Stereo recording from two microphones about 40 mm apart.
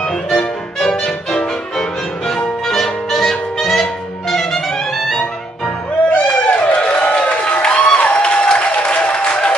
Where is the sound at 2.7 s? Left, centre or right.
Centre.